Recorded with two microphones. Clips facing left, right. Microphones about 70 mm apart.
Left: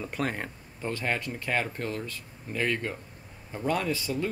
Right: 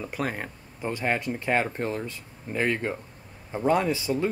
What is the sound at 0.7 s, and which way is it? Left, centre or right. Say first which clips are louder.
Speech: right 3 dB; centre.